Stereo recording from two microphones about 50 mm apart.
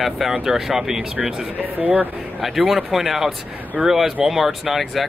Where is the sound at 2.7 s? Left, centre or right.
Centre.